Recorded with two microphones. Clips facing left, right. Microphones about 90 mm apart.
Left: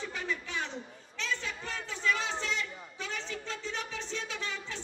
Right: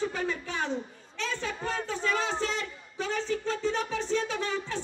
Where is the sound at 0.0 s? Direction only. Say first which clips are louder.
Right 6 dB; 40° right (ahead or behind).